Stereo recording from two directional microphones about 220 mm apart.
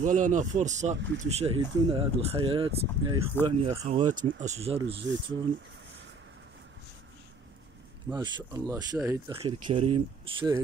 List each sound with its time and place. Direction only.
0.0 s speech: 35° right (ahead or behind)
3.4 s speech: 15° right (ahead or behind)
4.2 s speech: 35° right (ahead or behind)
8.1 s speech: 20° right (ahead or behind)
9.3 s speech: 25° right (ahead or behind)